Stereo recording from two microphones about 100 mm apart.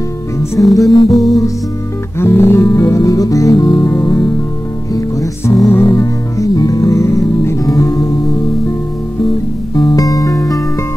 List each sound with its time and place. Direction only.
0.6 s music: centre (ahead or behind)
2.1 s music: 25° left (ahead or behind)
3.5 s music: 50° left (ahead or behind)
3.8 s music: 25° left (ahead or behind)
5.5 s music: 25° left (ahead or behind)
9.8 s music: 40° left (ahead or behind)